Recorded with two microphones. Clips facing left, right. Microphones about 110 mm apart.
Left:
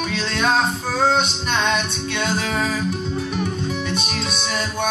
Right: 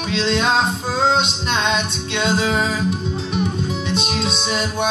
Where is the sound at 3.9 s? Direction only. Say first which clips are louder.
Right 3 dB; 20° right (ahead or behind).